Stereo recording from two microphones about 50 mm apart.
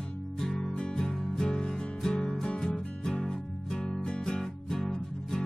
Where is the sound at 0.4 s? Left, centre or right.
Centre.